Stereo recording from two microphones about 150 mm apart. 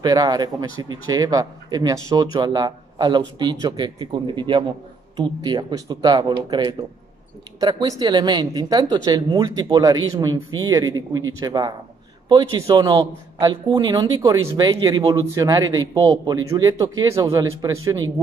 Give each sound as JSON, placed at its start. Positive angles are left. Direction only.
{"t": 0.0, "sound": "speech", "side_deg": -25}